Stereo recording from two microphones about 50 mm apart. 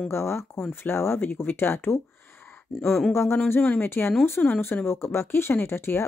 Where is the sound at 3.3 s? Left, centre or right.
Left.